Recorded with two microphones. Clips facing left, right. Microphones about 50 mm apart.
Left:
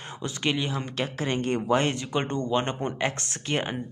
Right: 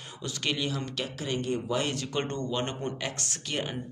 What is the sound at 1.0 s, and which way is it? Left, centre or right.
Speech, left.